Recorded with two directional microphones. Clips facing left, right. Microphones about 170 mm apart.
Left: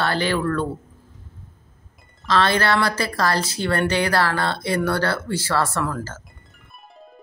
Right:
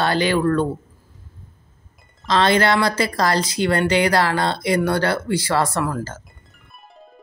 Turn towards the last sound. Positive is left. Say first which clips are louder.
# right 2 dB
turn(degrees=-15)  # may be behind; listen again after turning